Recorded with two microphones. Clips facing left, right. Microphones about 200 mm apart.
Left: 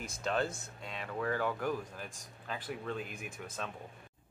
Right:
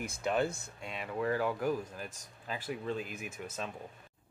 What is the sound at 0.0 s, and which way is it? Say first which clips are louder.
Speech: right 3 dB; 10° right (ahead or behind).